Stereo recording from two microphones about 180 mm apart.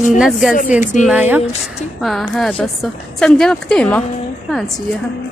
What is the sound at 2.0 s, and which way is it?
Speech, centre (ahead or behind).